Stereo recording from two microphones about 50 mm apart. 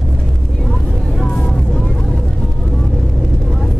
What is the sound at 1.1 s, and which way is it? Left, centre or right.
Vehicle, centre.